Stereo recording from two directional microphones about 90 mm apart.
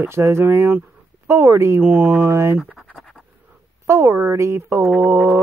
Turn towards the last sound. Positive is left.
turn(degrees=-25)  # may be behind; listen again after turning